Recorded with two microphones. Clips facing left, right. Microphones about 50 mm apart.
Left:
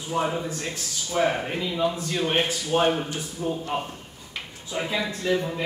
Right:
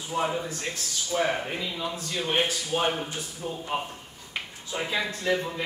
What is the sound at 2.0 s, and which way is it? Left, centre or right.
Speech, left.